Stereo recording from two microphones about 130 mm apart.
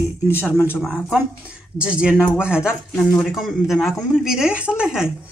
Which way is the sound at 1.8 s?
10° right (ahead or behind).